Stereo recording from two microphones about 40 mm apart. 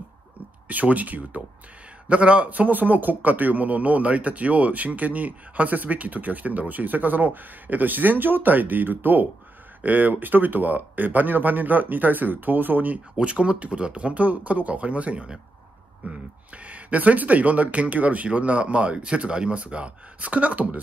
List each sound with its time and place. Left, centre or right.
0.7 s a man's voice: right
13.2 s speech: right